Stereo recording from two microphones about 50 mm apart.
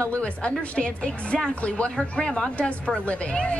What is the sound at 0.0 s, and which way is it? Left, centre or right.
A woman's voice, left.